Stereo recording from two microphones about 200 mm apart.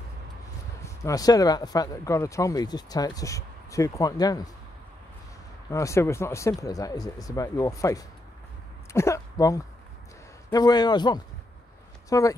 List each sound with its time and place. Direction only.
0.8 s speech: 15° left (ahead or behind)
5.7 s a man's voice: 15° left (ahead or behind)